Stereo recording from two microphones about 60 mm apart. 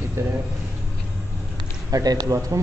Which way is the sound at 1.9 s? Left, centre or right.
Right.